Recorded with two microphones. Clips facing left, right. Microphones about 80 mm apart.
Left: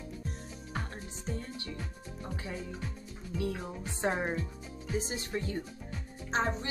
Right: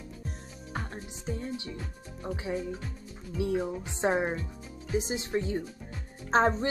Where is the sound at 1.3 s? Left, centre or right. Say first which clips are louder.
Right 4 dB; centre.